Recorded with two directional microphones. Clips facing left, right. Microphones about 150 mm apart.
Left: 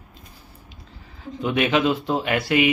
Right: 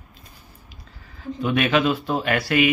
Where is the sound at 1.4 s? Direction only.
20° left (ahead or behind).